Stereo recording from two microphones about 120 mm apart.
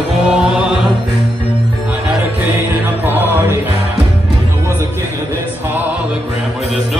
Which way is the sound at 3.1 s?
15° right (ahead or behind).